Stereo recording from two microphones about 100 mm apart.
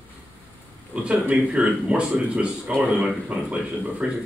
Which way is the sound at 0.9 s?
10° right (ahead or behind).